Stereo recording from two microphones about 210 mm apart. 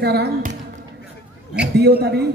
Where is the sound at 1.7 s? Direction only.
50° right (ahead or behind).